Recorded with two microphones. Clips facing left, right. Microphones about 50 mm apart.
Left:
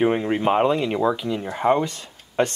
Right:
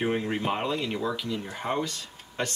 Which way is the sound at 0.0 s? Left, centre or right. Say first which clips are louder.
Left 8 dB; left.